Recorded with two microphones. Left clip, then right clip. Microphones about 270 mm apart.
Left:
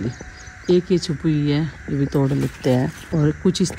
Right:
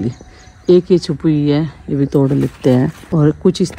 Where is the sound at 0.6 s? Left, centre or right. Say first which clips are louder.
Right 7 dB; centre.